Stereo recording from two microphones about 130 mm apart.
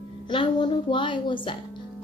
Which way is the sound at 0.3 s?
40° left (ahead or behind).